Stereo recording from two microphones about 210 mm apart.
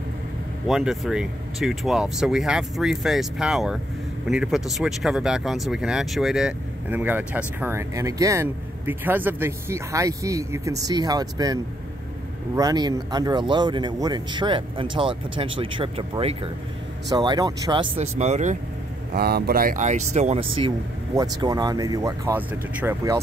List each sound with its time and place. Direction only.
0.7 s speech: centre (ahead or behind); by 18.6 s 35° right (ahead or behind)
19.1 s speech: 50° right (ahead or behind); by 20.4 s 30° right (ahead or behind)
20.5 s speech: 20° right (ahead or behind)